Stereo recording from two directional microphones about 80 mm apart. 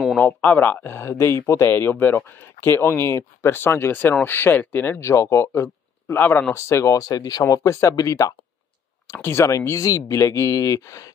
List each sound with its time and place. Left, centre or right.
0.2 s speech: left
6.5 s speech: left